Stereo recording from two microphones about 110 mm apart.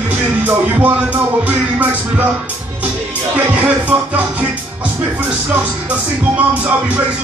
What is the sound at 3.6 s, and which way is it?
Speech, 15° right (ahead or behind).